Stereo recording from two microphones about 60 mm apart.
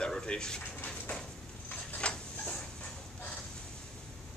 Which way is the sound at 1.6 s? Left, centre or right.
Centre.